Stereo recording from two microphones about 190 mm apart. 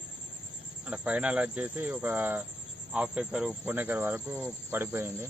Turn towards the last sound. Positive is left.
turn(degrees=-10)  # may be behind; listen again after turning